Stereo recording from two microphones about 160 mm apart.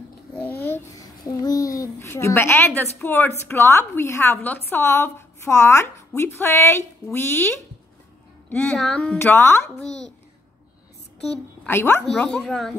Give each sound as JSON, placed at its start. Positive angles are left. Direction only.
{"t": 0.7, "sound": "a child's voice", "side_deg": 20}
{"t": 9.2, "sound": "a child's voice", "side_deg": 15}
{"t": 11.6, "sound": "a child's voice", "side_deg": 15}